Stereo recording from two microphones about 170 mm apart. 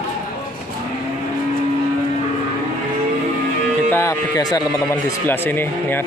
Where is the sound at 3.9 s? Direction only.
20° left (ahead or behind).